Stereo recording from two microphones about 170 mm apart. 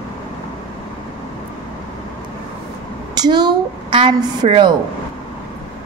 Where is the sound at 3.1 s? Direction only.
25° right (ahead or behind).